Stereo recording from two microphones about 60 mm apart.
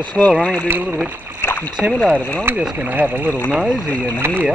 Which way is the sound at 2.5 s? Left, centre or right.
Right.